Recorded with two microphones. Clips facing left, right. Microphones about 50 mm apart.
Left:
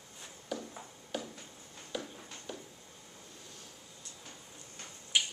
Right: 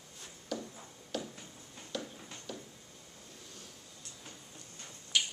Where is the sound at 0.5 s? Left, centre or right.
Centre.